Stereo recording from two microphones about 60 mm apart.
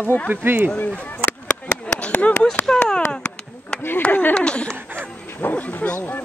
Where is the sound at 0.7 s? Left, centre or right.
Left.